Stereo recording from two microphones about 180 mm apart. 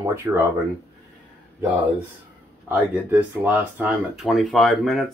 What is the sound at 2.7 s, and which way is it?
Speech, 10° right (ahead or behind).